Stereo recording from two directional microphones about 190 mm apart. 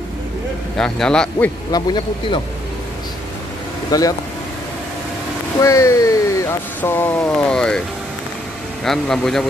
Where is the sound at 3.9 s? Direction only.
20° left (ahead or behind).